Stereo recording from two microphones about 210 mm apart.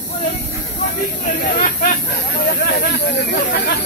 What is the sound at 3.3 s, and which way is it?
Chatter, 50° left (ahead or behind).